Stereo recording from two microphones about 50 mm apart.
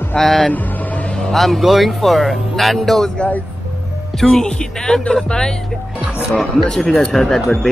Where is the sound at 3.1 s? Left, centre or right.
Left.